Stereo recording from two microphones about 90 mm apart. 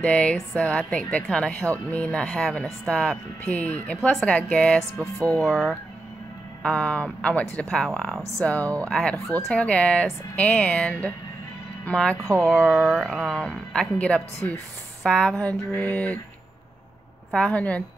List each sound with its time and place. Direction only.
0.0 s speech: 15° left (ahead or behind)
4.1 s speech: 5° left (ahead or behind)
17.5 s speech: 15° left (ahead or behind)